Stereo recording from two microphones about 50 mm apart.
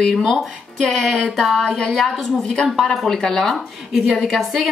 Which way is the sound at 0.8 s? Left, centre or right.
Centre.